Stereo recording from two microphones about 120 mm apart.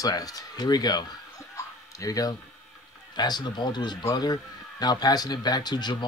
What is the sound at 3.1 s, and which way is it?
Speech, 35° left (ahead or behind).